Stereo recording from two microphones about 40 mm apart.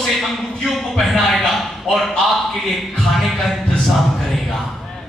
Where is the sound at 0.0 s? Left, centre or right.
Centre.